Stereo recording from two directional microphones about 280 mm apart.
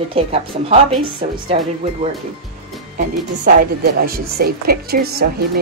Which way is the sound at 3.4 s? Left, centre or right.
Right.